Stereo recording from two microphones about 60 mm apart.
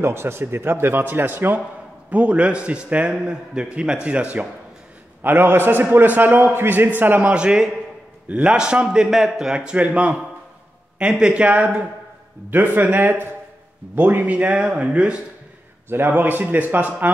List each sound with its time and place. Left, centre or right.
0.0 s speech: right
2.0 s a man's voice: right
5.2 s speech: right
7.3 s a man's voice: centre
9.6 s a man's voice: right
16.1 s speech: right